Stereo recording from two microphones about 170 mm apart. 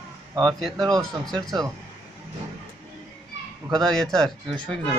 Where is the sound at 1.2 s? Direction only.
Centre (ahead or behind).